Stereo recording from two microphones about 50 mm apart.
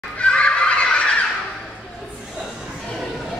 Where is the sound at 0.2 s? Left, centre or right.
Left.